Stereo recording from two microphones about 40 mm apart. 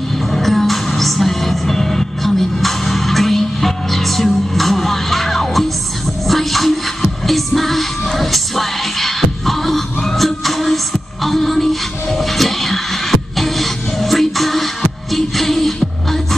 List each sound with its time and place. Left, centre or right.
0.3 s music: centre